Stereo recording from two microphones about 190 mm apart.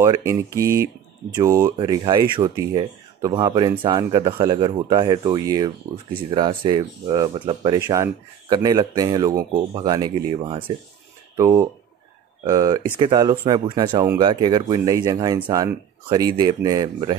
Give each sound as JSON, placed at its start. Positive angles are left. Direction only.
{"t": 0.0, "sound": "speech", "side_deg": -15}